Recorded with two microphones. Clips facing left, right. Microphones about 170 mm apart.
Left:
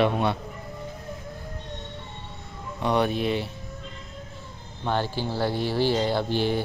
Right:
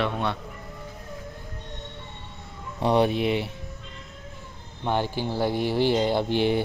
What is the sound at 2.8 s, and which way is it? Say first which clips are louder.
Speech: right 2 dB; 30° right (ahead or behind).